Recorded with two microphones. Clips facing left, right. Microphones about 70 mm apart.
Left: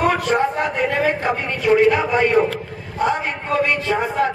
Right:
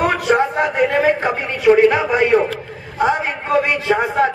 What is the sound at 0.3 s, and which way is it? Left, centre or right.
Speech, centre.